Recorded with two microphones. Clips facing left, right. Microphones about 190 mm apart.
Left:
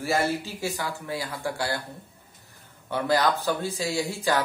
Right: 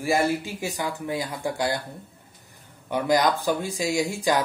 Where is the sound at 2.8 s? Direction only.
15° right (ahead or behind).